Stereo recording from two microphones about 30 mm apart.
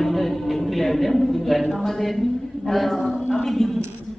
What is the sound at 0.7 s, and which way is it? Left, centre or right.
A woman's voice, centre.